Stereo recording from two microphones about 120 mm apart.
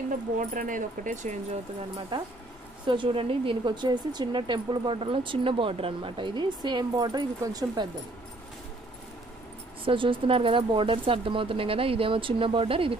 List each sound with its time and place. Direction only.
0.1 s speech: 90° right
2.1 s speech: 40° right (ahead or behind)
9.8 s speech: 45° right (ahead or behind)